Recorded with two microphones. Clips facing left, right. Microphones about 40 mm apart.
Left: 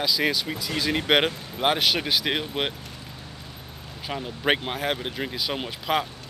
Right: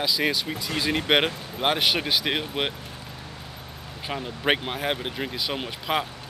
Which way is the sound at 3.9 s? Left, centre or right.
Centre.